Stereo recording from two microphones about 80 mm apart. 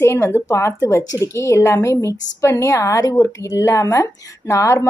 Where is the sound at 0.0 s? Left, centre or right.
Left.